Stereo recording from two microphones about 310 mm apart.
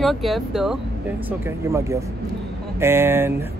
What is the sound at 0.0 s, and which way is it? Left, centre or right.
Speech, centre.